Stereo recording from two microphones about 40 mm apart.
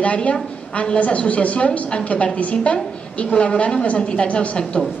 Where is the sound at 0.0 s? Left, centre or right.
Left.